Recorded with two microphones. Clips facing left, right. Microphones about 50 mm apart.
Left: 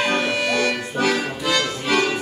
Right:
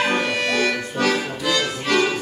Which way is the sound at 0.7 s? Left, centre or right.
Centre.